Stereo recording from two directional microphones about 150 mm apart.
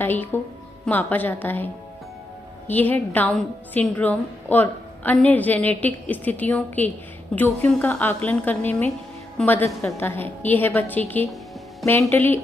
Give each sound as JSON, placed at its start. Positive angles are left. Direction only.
{"t": 0.0, "sound": "a woman's voice", "side_deg": 15}
{"t": 2.7, "sound": "a woman's voice", "side_deg": 10}